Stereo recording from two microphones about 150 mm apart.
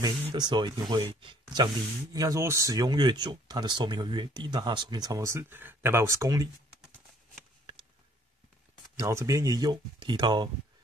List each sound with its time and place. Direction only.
0.3 s speech: 30° right (ahead or behind)
8.9 s speech: 20° right (ahead or behind)